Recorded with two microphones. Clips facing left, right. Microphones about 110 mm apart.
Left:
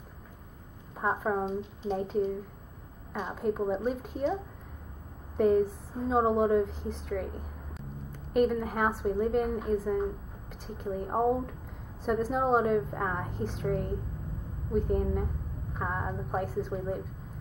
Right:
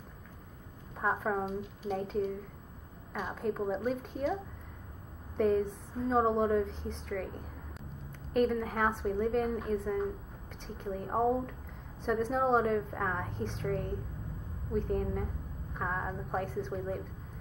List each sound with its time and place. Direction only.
1.1 s speech: 5° left (ahead or behind)
1.4 s speech: 25° left (ahead or behind)
2.0 s speech: 10° left (ahead or behind)
3.3 s speech: 5° left (ahead or behind)
5.4 s speech: 5° left (ahead or behind)